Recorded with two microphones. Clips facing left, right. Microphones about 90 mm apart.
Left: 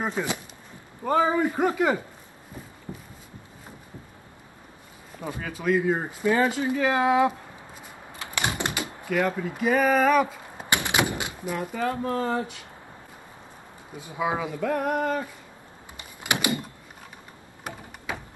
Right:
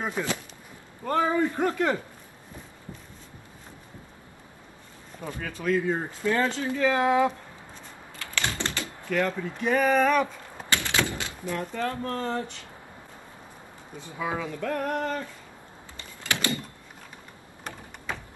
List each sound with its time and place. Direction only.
0.0 s speech: 15° left (ahead or behind)
5.2 s speech: 10° left (ahead or behind)
10.7 s speech: 20° left (ahead or behind)
13.9 s speech: 15° left (ahead or behind)
16.0 s door: 15° left (ahead or behind)